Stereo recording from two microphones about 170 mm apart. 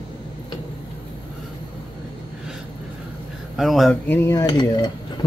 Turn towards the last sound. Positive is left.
turn(degrees=25)  # may be behind; listen again after turning